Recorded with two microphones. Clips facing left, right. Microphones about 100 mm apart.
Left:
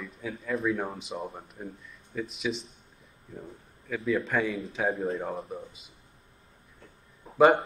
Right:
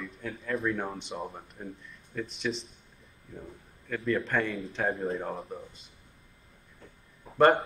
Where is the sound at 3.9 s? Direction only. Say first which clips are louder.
Left 1 dB; centre (ahead or behind).